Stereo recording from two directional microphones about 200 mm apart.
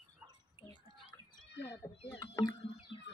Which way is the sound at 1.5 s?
55° left (ahead or behind).